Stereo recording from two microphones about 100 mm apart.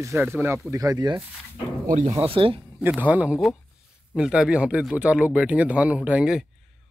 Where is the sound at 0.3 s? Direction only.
25° right (ahead or behind).